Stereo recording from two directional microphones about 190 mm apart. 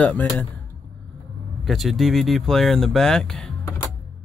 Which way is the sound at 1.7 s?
Centre (ahead or behind).